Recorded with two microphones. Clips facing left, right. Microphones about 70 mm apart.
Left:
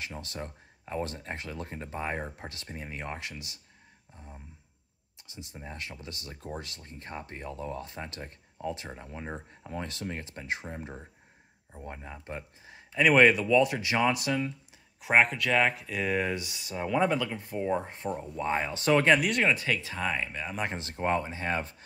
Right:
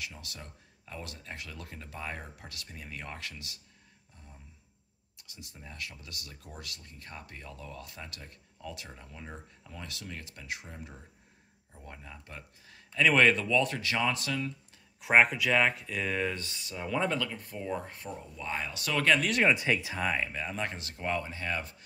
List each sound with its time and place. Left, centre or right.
0.0 s speech: left
15.0 s speech: centre; by 18.1 s left
18.1 s speech: left
19.5 s speech: centre
20.0 s speech: centre
20.5 s speech: left